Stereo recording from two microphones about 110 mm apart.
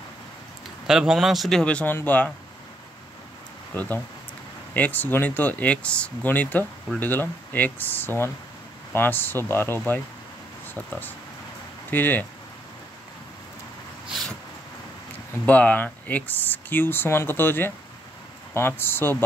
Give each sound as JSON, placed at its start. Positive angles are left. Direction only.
{"t": 0.8, "sound": "a man's voice", "side_deg": -5}
{"t": 3.7, "sound": "speech", "side_deg": 15}
{"t": 14.0, "sound": "a sound", "side_deg": 0}
{"t": 15.4, "sound": "speech", "side_deg": 15}